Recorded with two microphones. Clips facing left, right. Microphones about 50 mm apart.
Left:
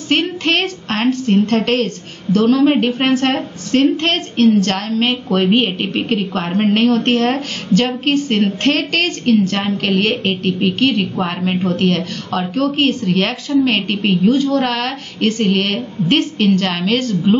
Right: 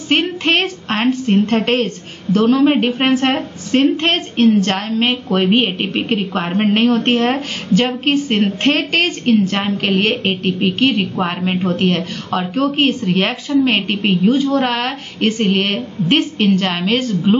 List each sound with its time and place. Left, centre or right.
0.1 s a woman's voice: centre